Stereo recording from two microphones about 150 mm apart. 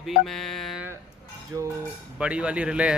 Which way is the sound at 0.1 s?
Centre (ahead or behind).